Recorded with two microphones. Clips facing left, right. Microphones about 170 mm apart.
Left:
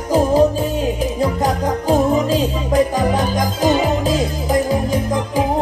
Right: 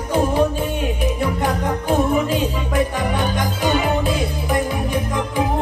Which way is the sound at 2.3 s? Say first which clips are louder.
Left 3 dB; 35° left (ahead or behind).